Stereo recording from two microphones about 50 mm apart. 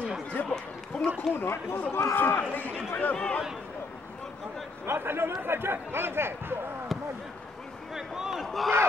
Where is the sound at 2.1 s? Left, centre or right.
Left.